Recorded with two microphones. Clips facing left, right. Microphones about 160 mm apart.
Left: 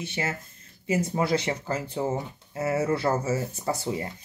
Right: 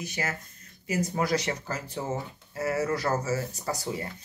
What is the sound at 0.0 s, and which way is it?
Speech, 25° left (ahead or behind).